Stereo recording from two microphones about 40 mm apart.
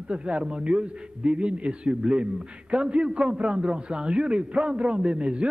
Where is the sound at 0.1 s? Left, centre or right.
Right.